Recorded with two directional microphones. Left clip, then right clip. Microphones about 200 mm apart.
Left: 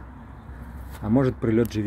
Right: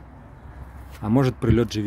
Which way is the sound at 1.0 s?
30° right (ahead or behind).